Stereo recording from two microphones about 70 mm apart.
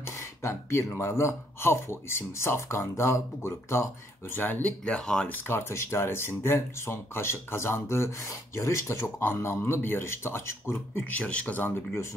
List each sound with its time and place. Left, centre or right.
0.4 s speech: left
4.4 s speech: left
4.9 s speech: centre
5.3 s speech: left
11.1 s speech: centre